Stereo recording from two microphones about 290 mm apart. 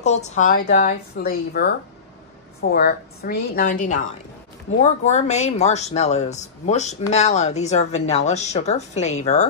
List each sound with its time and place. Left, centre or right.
0.0 s speech: left
2.7 s speech: left